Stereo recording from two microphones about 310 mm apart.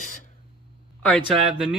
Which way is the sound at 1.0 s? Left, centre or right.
Centre.